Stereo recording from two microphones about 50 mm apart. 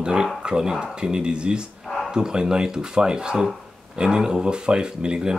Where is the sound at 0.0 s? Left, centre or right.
Centre.